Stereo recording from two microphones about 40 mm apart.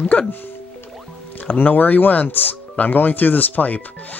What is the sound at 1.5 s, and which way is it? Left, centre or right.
Speech, left.